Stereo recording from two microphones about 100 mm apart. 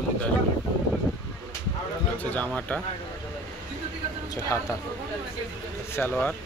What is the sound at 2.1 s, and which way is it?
Speech, 15° left (ahead or behind).